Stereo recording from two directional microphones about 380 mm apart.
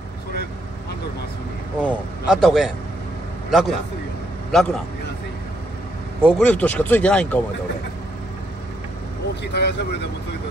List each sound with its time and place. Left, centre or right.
1.8 s a man's voice: centre
6.2 s speech: centre
9.4 s speech: left